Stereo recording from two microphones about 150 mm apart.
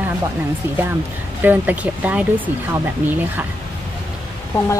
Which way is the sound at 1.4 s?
10° right (ahead or behind).